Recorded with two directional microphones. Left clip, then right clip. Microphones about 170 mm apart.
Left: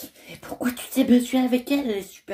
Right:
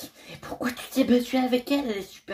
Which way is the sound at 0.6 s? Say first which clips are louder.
Left 2 dB; 10° left (ahead or behind).